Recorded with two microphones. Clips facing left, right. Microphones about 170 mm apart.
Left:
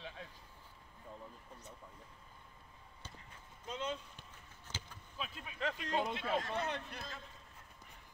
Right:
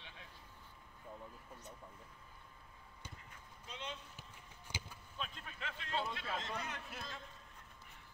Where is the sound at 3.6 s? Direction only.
45° left (ahead or behind).